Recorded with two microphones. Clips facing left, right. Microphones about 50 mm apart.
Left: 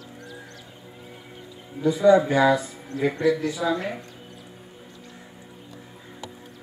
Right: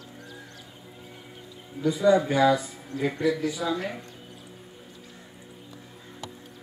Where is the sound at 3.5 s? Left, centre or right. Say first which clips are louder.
Left 3 dB; centre.